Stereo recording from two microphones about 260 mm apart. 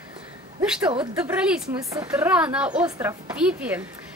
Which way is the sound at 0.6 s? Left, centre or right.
Centre.